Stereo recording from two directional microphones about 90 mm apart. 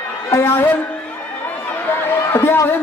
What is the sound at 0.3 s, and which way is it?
Speech, 25° left (ahead or behind).